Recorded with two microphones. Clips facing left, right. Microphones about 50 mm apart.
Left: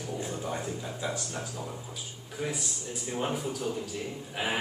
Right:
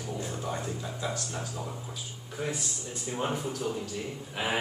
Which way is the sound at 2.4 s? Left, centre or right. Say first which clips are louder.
Even; centre.